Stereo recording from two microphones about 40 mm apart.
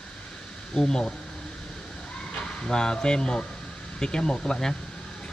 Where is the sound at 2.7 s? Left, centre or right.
Centre.